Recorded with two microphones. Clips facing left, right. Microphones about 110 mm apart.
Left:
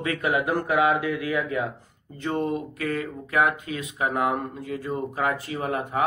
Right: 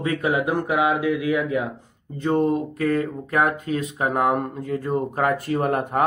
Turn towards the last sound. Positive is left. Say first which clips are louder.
# right 5 dB
turn(degrees=-55)  # may be behind; listen again after turning